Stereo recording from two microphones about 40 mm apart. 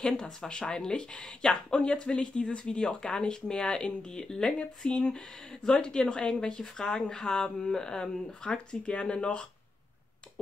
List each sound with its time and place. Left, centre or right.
0.5 s speech: centre